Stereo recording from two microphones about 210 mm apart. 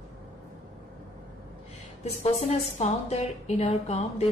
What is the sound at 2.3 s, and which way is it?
A woman's voice, 30° left (ahead or behind).